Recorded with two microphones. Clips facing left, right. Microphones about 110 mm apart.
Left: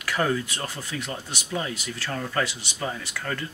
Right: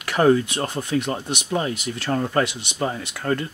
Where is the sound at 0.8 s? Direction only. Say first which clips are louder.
Right 9 dB; 60° right (ahead or behind).